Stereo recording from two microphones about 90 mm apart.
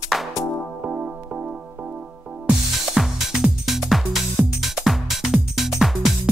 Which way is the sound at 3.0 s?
5° right (ahead or behind).